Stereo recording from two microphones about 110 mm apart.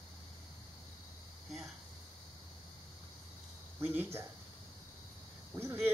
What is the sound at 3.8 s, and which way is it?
Speech, 20° right (ahead or behind).